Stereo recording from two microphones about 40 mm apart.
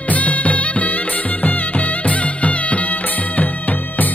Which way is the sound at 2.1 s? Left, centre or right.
Left.